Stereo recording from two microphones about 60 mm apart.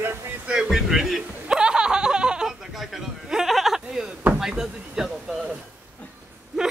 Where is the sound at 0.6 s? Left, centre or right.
Centre.